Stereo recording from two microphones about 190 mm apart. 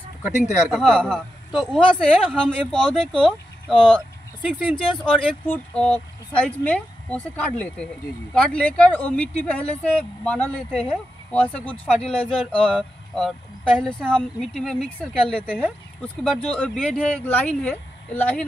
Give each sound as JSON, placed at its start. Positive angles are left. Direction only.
{"t": 0.3, "sound": "speech", "side_deg": 40}
{"t": 0.7, "sound": "speech", "side_deg": 0}